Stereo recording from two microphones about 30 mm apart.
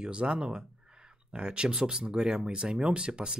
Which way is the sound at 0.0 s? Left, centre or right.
Right.